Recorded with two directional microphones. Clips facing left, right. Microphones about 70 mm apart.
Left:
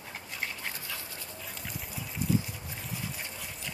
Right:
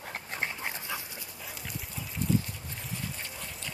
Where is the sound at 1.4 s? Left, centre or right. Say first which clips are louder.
Right 1 dB; centre.